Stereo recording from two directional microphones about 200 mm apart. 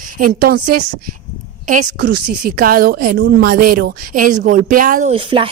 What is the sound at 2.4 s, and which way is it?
A woman's voice, 45° right (ahead or behind).